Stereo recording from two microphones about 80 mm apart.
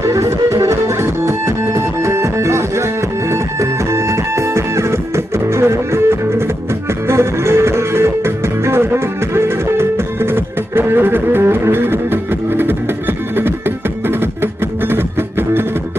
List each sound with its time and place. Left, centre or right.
0.0 s music: right